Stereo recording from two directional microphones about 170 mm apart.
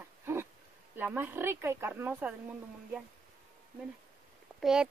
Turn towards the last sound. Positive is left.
turn(degrees=-5)  # may be behind; listen again after turning